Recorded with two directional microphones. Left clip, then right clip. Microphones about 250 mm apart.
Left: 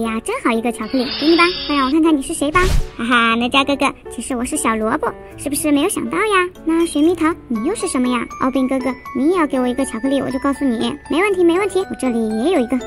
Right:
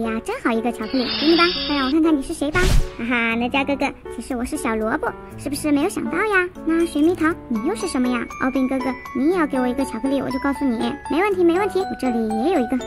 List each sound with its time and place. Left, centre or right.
0.0 s wind chime: centre
3.4 s a woman's voice: centre
3.7 s speech: centre
9.3 s wind chime: centre